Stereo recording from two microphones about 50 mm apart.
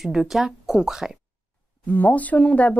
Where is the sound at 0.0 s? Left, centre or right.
Centre.